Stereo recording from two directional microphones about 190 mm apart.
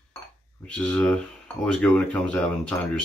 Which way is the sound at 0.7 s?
5° left (ahead or behind).